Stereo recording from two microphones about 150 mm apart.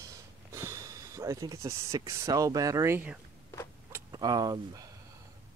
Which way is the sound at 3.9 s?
25° right (ahead or behind).